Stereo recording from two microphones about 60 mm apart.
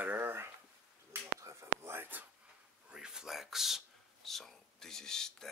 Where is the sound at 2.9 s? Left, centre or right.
Centre.